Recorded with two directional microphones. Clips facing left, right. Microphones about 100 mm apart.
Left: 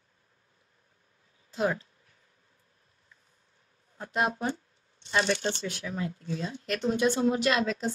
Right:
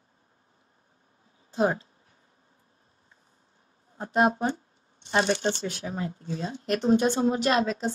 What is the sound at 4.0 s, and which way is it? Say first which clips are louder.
Speech: right 6 dB; 35° right (ahead or behind).